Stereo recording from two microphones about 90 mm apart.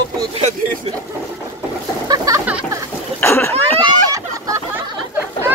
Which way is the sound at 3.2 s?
25° left (ahead or behind).